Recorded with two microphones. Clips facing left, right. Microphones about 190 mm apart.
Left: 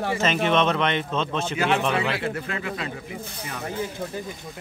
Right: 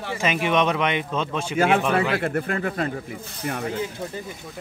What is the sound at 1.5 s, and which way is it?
Speech, 50° right (ahead or behind).